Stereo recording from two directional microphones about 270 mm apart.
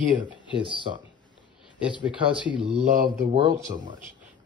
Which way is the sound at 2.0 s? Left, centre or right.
Centre.